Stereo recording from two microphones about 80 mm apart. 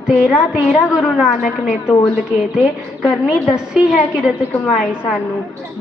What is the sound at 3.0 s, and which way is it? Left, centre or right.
A woman's voice, centre.